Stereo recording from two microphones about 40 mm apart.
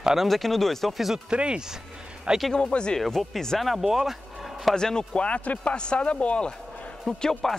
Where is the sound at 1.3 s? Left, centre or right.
Right.